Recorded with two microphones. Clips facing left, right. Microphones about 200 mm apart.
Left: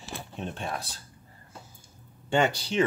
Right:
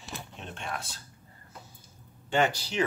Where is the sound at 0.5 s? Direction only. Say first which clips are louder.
Left 3 dB; 35° left (ahead or behind).